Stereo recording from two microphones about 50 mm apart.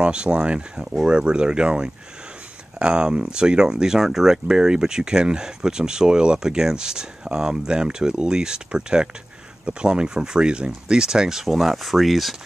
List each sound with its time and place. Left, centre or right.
0.0 s speech: centre